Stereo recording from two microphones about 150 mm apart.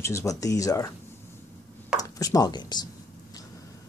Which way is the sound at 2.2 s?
25° left (ahead or behind).